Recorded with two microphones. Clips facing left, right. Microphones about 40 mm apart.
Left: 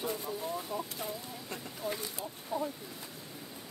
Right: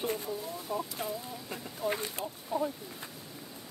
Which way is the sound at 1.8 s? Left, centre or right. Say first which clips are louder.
Right 5 dB; right.